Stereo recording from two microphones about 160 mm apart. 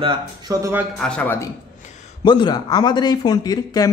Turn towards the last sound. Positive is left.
turn(degrees=25)  # may be behind; listen again after turning